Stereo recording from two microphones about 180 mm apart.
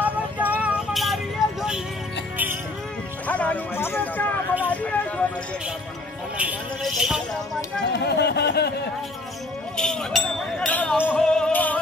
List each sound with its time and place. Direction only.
0.0 s music: 10° right (ahead or behind)
3.3 s a sound: 10° left (ahead or behind)
6.3 s music: 5° right (ahead or behind)
7.8 s a sound: 70° left (ahead or behind)
9.8 s chink: 5° left (ahead or behind)
11.1 s music: 5° left (ahead or behind)